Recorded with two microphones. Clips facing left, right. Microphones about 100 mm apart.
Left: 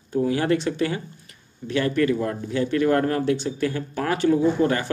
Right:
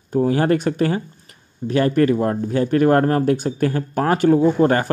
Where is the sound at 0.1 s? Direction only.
40° right (ahead or behind).